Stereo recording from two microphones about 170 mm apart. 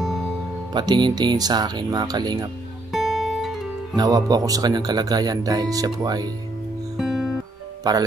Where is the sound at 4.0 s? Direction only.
20° right (ahead or behind).